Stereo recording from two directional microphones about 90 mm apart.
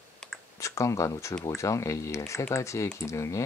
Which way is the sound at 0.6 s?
35° left (ahead or behind).